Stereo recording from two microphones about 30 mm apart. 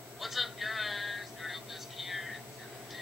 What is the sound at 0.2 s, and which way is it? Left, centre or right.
Vehicle, centre.